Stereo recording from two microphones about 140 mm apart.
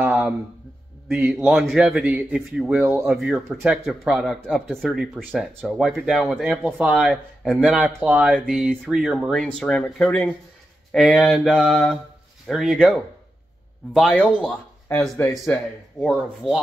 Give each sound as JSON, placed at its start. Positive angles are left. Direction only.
{"t": 0.0, "sound": "a sound", "side_deg": -10}
{"t": 1.1, "sound": "speech", "side_deg": -10}
{"t": 3.6, "sound": "speech", "side_deg": -5}
{"t": 16.0, "sound": "speech", "side_deg": 0}